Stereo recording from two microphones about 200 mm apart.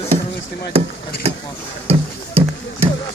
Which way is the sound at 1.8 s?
30° right (ahead or behind).